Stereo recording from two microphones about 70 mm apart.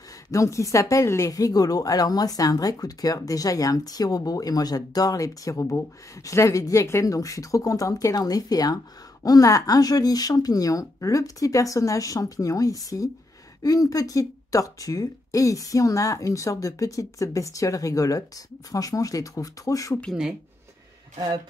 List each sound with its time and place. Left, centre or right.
0.3 s a woman's voice: left